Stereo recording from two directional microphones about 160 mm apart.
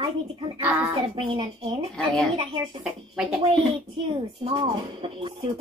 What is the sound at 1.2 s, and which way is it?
Speech, 30° right (ahead or behind).